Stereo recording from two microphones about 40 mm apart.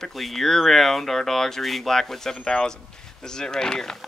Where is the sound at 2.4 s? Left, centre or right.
Left.